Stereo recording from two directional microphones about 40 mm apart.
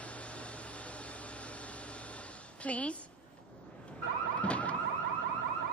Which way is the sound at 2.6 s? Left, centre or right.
Left.